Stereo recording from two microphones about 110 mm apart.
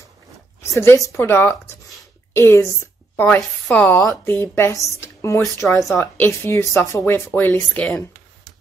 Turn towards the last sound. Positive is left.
turn(degrees=10)  # may be behind; listen again after turning